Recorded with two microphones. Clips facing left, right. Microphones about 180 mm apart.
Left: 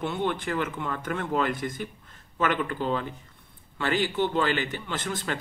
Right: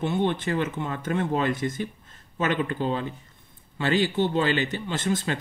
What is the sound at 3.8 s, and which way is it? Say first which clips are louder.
Speech: right 3 dB; 50° left (ahead or behind).